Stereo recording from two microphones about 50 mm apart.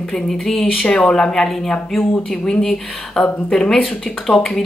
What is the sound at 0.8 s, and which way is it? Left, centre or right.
Speech, centre.